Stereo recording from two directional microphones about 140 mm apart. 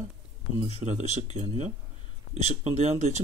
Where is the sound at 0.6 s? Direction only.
45° right (ahead or behind).